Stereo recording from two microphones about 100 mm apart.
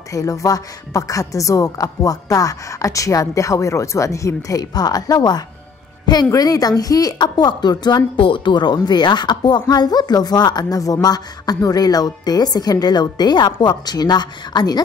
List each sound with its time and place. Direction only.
0.1 s a woman's voice: 35° left (ahead or behind)
8.2 s speech: 55° left (ahead or behind)